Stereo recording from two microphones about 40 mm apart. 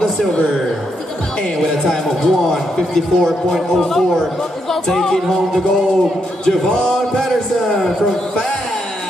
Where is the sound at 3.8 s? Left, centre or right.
Centre.